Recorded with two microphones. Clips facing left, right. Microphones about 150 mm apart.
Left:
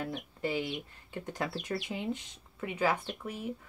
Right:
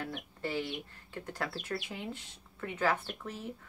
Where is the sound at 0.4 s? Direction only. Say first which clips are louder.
Left 2 dB; 15° left (ahead or behind).